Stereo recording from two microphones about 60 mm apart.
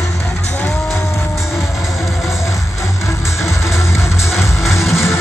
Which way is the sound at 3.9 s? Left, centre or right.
Left.